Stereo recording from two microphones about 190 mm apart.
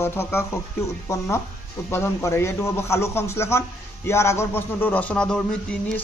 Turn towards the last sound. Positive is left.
turn(degrees=5)  # may be behind; listen again after turning